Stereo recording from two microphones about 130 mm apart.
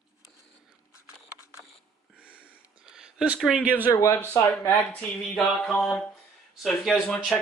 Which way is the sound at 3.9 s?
25° left (ahead or behind).